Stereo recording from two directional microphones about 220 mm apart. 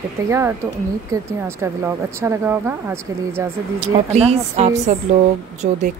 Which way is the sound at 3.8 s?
30° right (ahead or behind).